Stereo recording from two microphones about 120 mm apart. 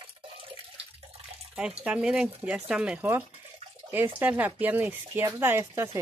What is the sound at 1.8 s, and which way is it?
Speech, 10° right (ahead or behind).